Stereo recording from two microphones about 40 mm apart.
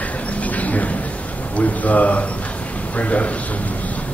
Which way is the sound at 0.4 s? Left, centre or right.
Left.